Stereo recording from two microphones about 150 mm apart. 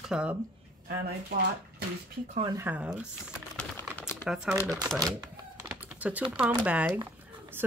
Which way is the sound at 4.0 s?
15° left (ahead or behind).